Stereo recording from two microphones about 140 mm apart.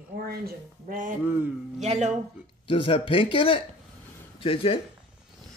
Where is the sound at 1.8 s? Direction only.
55° right (ahead or behind).